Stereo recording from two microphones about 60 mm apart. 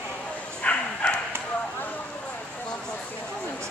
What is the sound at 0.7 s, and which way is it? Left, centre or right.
Bow-wow, centre.